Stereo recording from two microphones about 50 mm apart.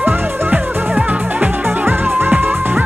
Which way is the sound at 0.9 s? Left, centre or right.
Right.